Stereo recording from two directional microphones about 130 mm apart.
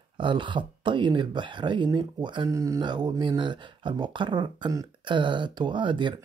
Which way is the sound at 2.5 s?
25° right (ahead or behind).